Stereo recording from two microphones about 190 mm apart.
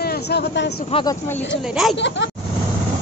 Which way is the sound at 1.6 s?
Centre (ahead or behind).